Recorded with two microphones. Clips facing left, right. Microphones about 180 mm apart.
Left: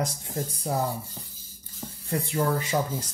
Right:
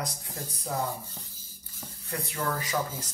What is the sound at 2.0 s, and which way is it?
Speech, 30° left (ahead or behind).